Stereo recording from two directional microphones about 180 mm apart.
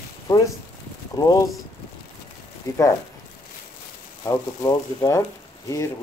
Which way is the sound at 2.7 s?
20° left (ahead or behind).